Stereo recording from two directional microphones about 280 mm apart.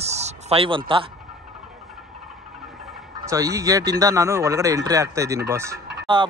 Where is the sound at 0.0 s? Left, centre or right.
Right.